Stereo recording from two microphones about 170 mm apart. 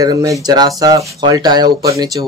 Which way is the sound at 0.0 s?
20° right (ahead or behind).